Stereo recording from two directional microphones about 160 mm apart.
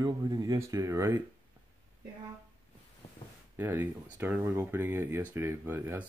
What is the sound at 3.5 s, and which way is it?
Speech, 15° right (ahead or behind).